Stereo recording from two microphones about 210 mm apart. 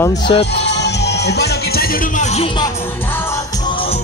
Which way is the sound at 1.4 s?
45° left (ahead or behind).